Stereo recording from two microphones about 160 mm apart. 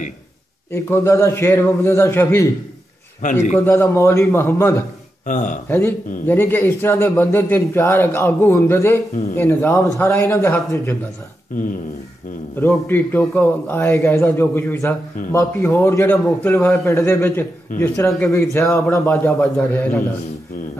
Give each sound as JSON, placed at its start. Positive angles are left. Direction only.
{"t": 0.7, "sound": "a man's voice", "side_deg": 15}
{"t": 3.2, "sound": "a man's voice", "side_deg": 50}
{"t": 3.5, "sound": "a man's voice", "side_deg": 10}
{"t": 5.2, "sound": "speech", "side_deg": 55}
{"t": 5.7, "sound": "a man's voice", "side_deg": 15}
{"t": 12.5, "sound": "a man's voice", "side_deg": 10}